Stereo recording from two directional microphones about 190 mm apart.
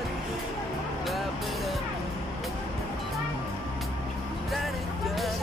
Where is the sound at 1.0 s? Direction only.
Centre (ahead or behind).